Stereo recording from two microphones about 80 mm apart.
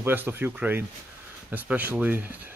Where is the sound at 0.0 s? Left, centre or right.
Right.